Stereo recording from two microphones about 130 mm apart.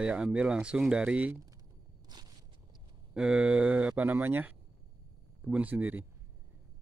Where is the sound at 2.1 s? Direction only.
35° right (ahead or behind).